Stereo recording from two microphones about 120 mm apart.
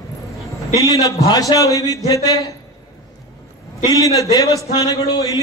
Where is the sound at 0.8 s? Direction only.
30° left (ahead or behind).